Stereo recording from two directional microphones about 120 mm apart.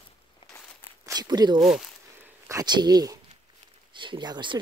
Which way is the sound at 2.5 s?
35° right (ahead or behind).